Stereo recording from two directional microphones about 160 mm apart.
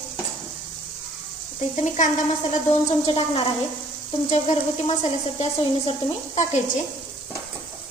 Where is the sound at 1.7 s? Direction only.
50° left (ahead or behind).